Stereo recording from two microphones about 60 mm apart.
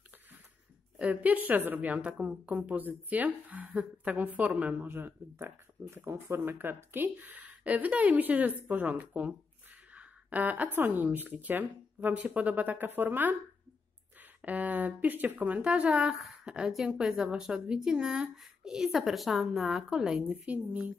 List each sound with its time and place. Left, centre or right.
1.1 s speech: right
4.8 s speech: right
9.9 s a sound: right
10.9 s speech: right
14.4 s a woman's voice: right